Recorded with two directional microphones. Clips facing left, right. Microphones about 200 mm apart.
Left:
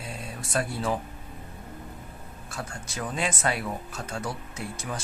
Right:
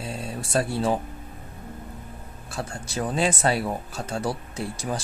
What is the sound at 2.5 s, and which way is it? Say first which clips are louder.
Speech: right 6 dB; 30° right (ahead or behind).